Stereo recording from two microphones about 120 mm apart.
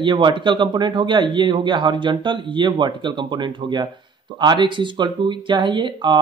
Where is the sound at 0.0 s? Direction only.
40° right (ahead or behind).